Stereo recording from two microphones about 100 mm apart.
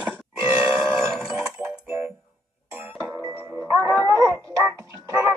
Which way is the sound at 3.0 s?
25° right (ahead or behind).